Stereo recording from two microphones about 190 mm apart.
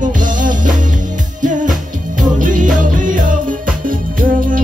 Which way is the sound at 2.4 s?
45° right (ahead or behind).